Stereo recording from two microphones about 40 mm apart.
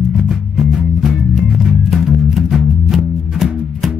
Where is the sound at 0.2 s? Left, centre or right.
Centre.